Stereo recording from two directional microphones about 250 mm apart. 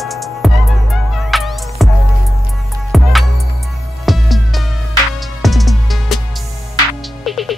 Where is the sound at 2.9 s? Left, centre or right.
Centre.